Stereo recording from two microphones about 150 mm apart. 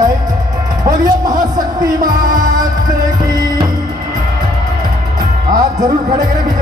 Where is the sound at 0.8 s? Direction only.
25° right (ahead or behind).